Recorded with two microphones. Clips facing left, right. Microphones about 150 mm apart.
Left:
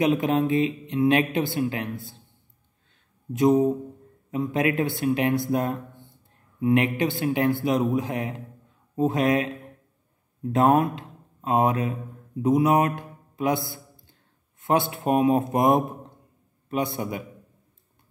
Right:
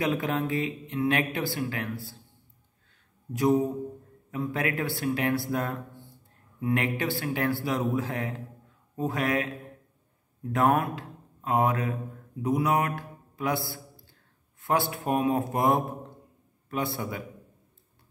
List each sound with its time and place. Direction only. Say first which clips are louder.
0.0 s speech: left 6 dB; 20° left (ahead or behind)
3.3 s speech: left 5 dB; 20° left (ahead or behind)
10.5 s a man's voice: left 4 dB; 20° left (ahead or behind)